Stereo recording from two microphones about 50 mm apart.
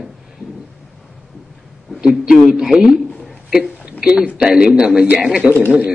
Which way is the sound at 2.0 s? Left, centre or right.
Centre.